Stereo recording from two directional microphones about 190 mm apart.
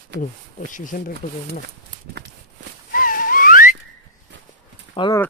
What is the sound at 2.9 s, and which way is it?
Wheeze, 45° left (ahead or behind).